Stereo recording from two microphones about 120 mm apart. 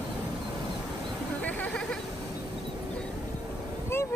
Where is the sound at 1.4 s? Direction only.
10° left (ahead or behind).